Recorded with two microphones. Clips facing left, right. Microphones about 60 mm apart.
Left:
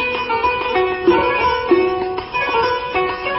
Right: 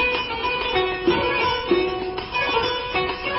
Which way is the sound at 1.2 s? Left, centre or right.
Left.